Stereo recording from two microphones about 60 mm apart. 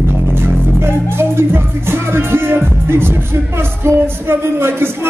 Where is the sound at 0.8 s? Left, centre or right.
Right.